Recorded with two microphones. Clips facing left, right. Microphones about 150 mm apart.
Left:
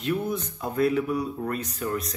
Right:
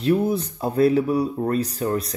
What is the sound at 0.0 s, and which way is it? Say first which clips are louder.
Speech: right 7 dB; 35° right (ahead or behind).